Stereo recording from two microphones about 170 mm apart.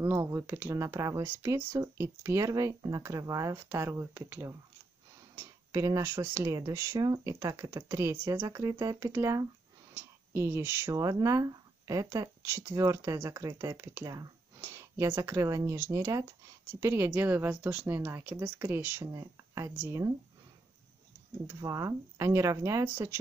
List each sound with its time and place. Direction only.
0.0 s speech: 15° right (ahead or behind)
21.5 s speech: 20° right (ahead or behind)